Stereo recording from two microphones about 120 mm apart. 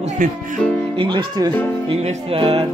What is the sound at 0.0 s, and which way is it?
Speech, 90° right.